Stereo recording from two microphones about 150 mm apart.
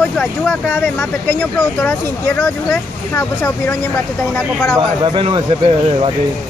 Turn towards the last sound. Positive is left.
turn(degrees=-35)  # may be behind; listen again after turning